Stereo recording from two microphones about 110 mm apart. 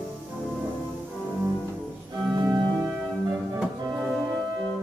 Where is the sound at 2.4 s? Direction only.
40° right (ahead or behind).